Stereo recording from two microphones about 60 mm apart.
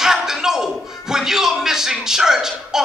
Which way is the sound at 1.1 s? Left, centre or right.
Centre.